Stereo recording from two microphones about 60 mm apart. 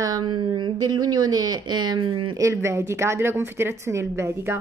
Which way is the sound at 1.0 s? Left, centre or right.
Right.